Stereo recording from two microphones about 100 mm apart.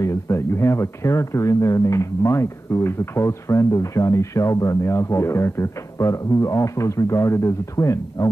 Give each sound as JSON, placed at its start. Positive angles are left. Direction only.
{"t": 0.0, "sound": "speech", "side_deg": 30}